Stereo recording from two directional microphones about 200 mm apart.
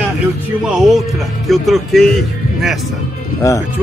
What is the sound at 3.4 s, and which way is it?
Speech, 15° left (ahead or behind).